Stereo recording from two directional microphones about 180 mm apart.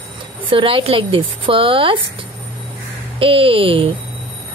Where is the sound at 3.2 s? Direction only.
30° right (ahead or behind).